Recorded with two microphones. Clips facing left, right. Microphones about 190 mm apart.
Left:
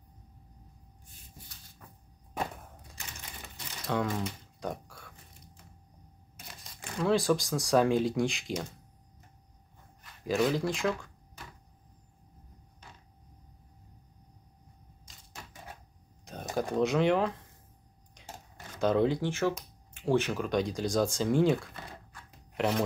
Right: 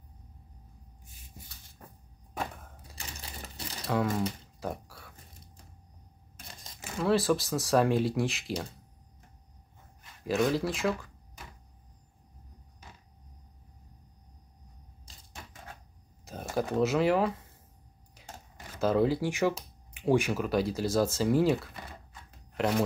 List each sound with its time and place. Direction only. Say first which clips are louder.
3.2 s typewriter: right 3 dB; 35° right (ahead or behind)
3.8 s speech: right 2 dB; 5° right (ahead or behind)
4.6 s a sound: even; 5° right (ahead or behind)
6.8 s speech: right 1 dB; 5° right (ahead or behind)
10.2 s speech: even; centre (ahead or behind)
12.8 s a sound: right 1 dB; 10° right (ahead or behind)
16.5 s speech: right 1 dB; 5° right (ahead or behind)
18.2 s a sound: left 1 dB; 5° right (ahead or behind)
18.8 s speech: even; 5° right (ahead or behind)